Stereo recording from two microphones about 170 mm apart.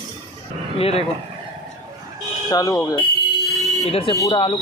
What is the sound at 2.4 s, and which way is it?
Speech, 20° left (ahead or behind).